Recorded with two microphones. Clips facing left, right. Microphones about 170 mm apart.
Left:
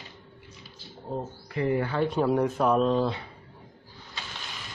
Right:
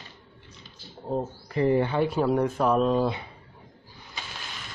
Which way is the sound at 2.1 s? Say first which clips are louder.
Even; centre (ahead or behind).